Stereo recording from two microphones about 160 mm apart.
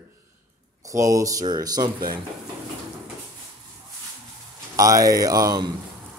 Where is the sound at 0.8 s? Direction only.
20° right (ahead or behind).